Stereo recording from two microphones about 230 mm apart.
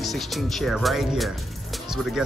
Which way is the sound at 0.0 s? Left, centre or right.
Centre.